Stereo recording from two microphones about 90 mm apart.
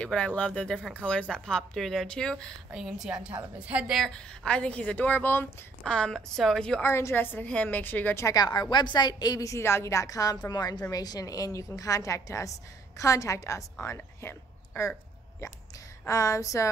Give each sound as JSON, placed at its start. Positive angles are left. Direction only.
{"t": 0.0, "sound": "a woman's voice", "side_deg": 10}
{"t": 2.7, "sound": "a woman's voice", "side_deg": -5}
{"t": 3.9, "sound": "a woman's voice", "side_deg": 5}
{"t": 5.9, "sound": "a woman's voice", "side_deg": 10}
{"t": 6.8, "sound": "a woman's voice", "side_deg": 30}
{"t": 8.3, "sound": "a woman's voice", "side_deg": 50}
{"t": 16.1, "sound": "a woman's voice", "side_deg": 35}